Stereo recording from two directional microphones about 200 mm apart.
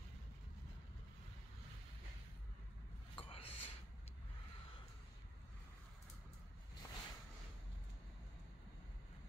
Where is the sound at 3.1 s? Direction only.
25° left (ahead or behind).